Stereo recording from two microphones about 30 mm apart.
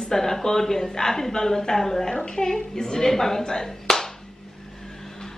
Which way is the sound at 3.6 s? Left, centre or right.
Centre.